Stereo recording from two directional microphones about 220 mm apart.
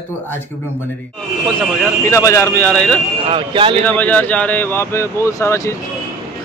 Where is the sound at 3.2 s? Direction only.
25° right (ahead or behind).